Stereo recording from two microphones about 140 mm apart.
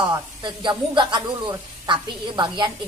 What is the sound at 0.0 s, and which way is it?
A woman's voice, 35° right (ahead or behind).